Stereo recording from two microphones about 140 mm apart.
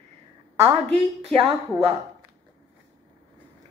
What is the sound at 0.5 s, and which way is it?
Speech, 45° right (ahead or behind).